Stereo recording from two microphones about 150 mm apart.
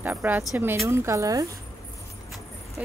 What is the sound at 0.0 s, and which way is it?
A woman's voice, 10° right (ahead or behind).